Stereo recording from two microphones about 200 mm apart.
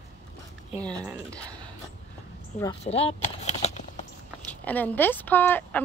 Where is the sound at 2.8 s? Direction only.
30° left (ahead or behind).